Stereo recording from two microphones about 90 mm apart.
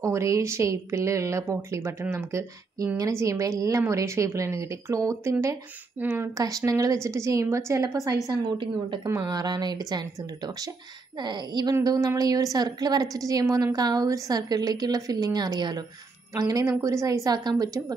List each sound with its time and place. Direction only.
0.0 s a woman's voice: 35° right (ahead or behind)
6.4 s a woman's voice: 40° right (ahead or behind)
8.3 s a woman's voice: 60° right (ahead or behind)
9.0 s a woman's voice: 40° right (ahead or behind)